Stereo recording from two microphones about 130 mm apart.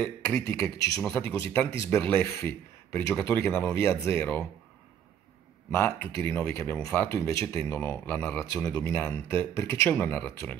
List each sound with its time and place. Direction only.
0.2 s speech: 20° left (ahead or behind)
5.7 s speech: 20° left (ahead or behind)